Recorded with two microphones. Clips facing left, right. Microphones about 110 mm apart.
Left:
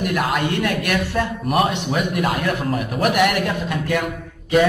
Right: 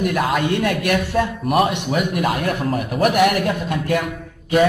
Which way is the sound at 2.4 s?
45° right (ahead or behind).